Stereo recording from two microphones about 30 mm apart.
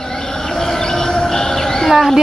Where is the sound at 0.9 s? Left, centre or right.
Left.